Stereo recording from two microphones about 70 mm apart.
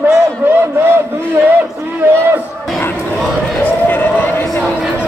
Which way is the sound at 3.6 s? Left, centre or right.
Left.